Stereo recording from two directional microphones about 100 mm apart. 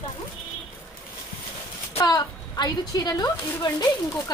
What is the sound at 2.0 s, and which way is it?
A woman's voice, 45° left (ahead or behind).